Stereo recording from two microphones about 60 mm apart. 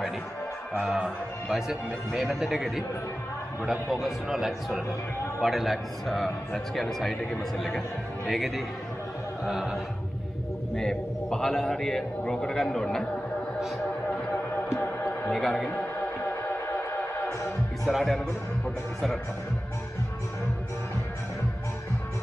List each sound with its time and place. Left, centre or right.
0.8 s a man's voice: centre
1.5 s a man's voice: centre
3.9 s a man's voice: centre
10.8 s a man's voice: centre
15.0 s a sound: centre
16.6 s music: left
17.3 s music: left
17.8 s a man's voice: centre